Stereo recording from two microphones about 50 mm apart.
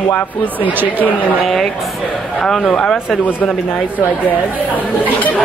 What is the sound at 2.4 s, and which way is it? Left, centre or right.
Speech, centre.